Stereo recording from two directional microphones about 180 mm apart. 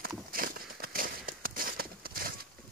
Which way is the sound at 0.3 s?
50° right (ahead or behind).